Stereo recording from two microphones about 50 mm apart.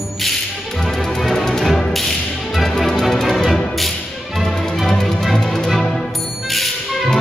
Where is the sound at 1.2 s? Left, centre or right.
Centre.